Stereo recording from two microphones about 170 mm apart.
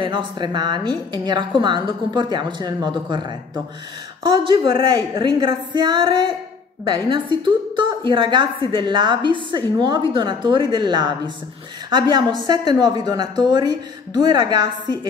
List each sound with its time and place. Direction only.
0.0 s a woman's voice: 30° right (ahead or behind)